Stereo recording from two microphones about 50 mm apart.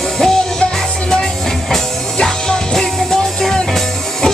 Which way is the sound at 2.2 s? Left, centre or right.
Centre.